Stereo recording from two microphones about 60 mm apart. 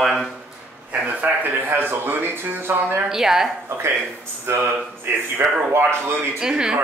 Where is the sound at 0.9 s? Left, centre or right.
Right.